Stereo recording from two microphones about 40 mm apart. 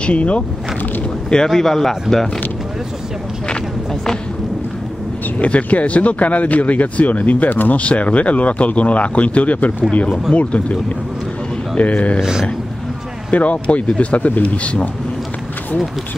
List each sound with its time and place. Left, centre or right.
0.0 s speech: left
1.5 s speech: centre
5.4 s speech: left
7.8 s speech: left
11.8 s speech: left
12.2 s speech: centre
13.3 s speech: left